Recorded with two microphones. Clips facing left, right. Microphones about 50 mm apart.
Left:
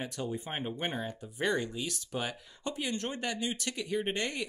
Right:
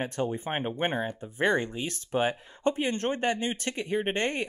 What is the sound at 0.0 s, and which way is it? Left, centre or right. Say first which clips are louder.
Speech: right 6 dB; right.